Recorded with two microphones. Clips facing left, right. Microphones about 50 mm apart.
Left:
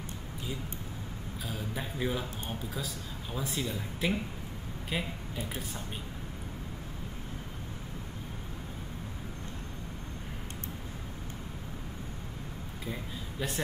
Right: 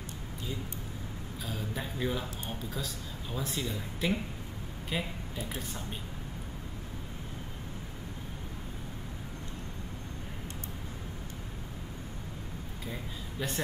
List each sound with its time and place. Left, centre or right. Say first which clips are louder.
1.4 s speech: even; centre
12.8 s speech: left 2 dB; centre